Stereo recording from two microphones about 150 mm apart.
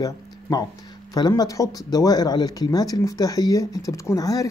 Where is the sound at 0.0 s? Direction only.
25° left (ahead or behind).